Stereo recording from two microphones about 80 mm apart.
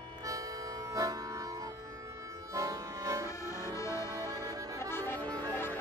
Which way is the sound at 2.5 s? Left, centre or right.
Right.